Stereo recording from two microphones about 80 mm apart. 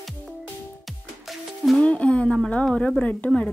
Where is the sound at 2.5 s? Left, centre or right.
Centre.